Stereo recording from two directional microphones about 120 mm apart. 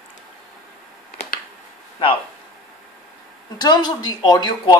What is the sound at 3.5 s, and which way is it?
Speech, 35° left (ahead or behind).